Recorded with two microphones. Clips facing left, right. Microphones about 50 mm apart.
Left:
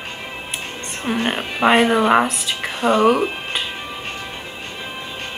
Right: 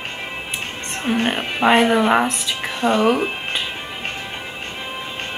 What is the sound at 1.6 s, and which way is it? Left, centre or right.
Speech, left.